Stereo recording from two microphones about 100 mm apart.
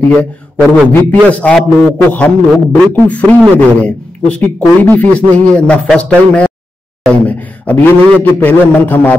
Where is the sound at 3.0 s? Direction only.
15° left (ahead or behind).